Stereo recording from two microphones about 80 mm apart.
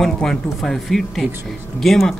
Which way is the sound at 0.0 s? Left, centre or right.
Centre.